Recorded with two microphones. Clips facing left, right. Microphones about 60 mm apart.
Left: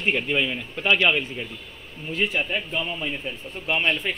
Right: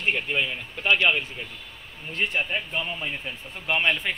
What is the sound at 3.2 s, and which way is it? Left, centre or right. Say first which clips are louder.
Speech: left 2 dB; right.